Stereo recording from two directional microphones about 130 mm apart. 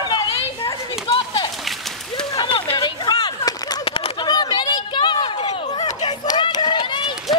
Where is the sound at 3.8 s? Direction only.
45° left (ahead or behind).